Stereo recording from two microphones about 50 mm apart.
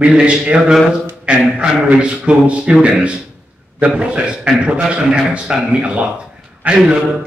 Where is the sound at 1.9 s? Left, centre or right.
Right.